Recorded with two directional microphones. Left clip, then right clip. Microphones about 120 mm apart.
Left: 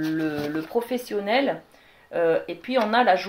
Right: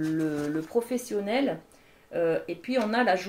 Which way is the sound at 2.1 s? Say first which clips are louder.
Left 5 dB; 35° left (ahead or behind).